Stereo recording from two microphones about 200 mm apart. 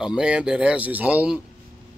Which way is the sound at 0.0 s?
5° right (ahead or behind).